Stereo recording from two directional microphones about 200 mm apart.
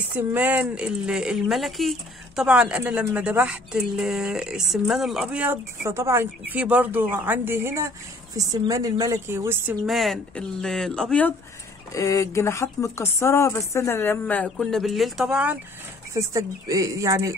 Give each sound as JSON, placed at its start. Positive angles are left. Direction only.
{"t": 0.1, "sound": "speech", "side_deg": -10}
{"t": 9.8, "sound": "speech", "side_deg": 0}
{"t": 11.9, "sound": "speech", "side_deg": 15}